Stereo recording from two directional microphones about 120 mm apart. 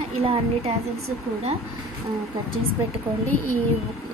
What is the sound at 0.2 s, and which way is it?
Speech, 55° right (ahead or behind).